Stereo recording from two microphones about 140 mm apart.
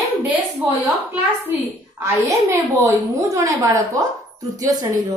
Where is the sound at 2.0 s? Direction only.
20° right (ahead or behind).